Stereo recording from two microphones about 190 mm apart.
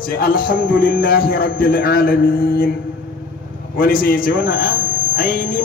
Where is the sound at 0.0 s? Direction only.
50° left (ahead or behind).